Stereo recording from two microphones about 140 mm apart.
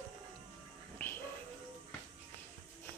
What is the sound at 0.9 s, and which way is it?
Music, 15° left (ahead or behind).